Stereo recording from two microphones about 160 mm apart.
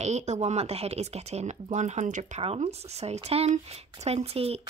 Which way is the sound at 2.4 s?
40° right (ahead or behind).